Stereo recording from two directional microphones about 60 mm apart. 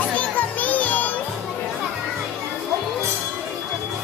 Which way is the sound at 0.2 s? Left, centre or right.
Left.